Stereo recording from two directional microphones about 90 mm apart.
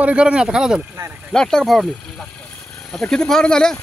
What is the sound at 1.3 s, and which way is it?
Speech, 5° left (ahead or behind).